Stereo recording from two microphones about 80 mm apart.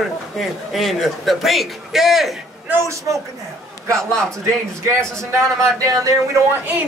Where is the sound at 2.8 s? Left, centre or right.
Right.